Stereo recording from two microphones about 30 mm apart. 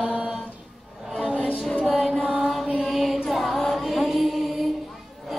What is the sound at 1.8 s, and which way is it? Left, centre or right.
Music, centre.